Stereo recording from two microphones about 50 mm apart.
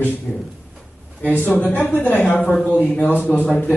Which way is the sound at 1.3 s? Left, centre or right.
Left.